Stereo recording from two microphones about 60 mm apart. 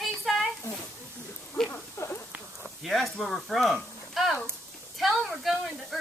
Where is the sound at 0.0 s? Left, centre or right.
Centre.